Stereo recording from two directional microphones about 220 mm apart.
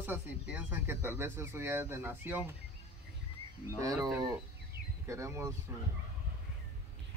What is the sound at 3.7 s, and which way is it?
Speech, 15° right (ahead or behind).